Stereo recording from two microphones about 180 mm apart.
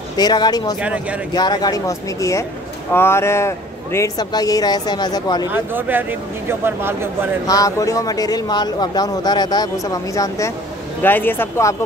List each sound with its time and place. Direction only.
0.2 s speech: 25° left (ahead or behind)
0.7 s speech: 5° right (ahead or behind)
1.3 s speech: 20° left (ahead or behind)
5.5 s speech: 10° right (ahead or behind)
7.4 s speech: 20° left (ahead or behind)